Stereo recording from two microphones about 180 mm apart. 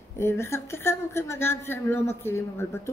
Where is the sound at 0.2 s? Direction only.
15° left (ahead or behind).